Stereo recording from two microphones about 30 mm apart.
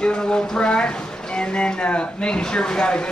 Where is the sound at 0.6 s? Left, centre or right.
Left.